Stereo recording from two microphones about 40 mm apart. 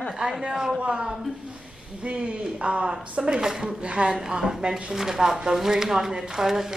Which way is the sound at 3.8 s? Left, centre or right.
Right.